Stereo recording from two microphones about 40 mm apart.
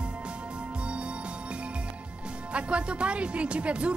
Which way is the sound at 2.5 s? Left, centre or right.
Right.